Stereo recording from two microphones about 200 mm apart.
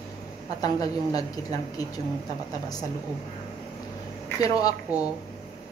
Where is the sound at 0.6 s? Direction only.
20° left (ahead or behind).